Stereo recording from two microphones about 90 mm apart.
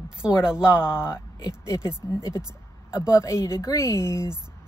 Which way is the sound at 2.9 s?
40° left (ahead or behind).